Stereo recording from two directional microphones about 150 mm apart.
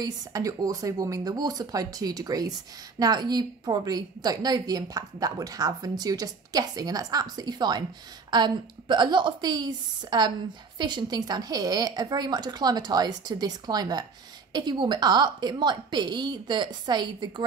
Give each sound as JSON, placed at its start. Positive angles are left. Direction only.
{"t": 0.0, "sound": "a woman's voice", "side_deg": -25}